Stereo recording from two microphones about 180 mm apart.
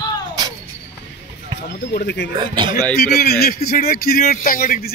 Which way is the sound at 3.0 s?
60° left (ahead or behind).